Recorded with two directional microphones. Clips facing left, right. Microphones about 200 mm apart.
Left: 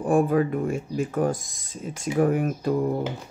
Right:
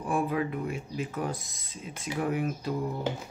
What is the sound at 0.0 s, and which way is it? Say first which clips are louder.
Speech: left 8 dB; 45° left (ahead or behind).